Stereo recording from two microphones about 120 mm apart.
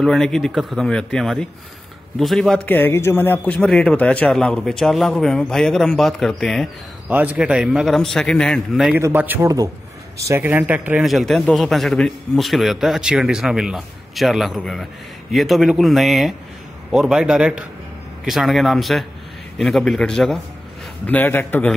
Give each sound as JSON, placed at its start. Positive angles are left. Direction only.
{"t": 0.0, "sound": "a man's voice", "side_deg": 5}
{"t": 2.7, "sound": "a man's voice", "side_deg": 20}
{"t": 7.1, "sound": "a man's voice", "side_deg": -15}
{"t": 8.9, "sound": "a man's voice", "side_deg": -15}
{"t": 9.4, "sound": "a man's voice", "side_deg": -30}
{"t": 10.4, "sound": "a man's voice", "side_deg": -15}
{"t": 21.1, "sound": "a man's voice", "side_deg": 15}